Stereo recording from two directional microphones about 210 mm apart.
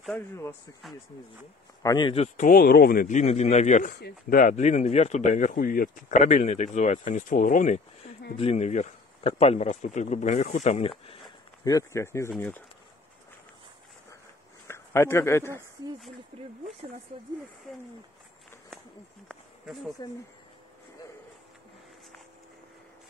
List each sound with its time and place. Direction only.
0.0 s speech: 10° left (ahead or behind)
1.8 s speech: 20° left (ahead or behind)
2.2 s speech: 35° left (ahead or behind)
11.6 s speech: 15° left (ahead or behind)
14.7 s a man's voice: 10° left (ahead or behind)
16.3 s speech: 30° right (ahead or behind)
17.7 s speech: centre (ahead or behind)
19.2 s speech: centre (ahead or behind)